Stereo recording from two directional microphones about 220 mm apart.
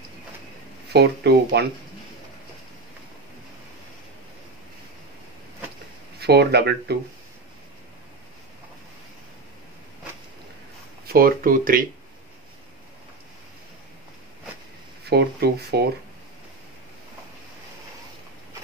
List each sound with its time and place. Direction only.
0.9 s speech: 45° right (ahead or behind)
6.1 s speech: 45° right (ahead or behind)
11.1 s speech: 40° right (ahead or behind)
15.0 s speech: 45° right (ahead or behind)